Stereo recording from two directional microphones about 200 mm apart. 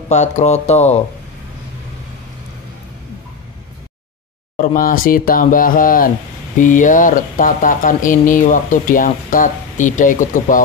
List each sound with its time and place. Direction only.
0.1 s speech: 35° left (ahead or behind)
4.6 s speech: 45° left (ahead or behind)